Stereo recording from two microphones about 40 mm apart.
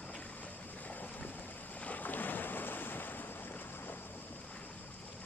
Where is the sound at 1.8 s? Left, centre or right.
Left.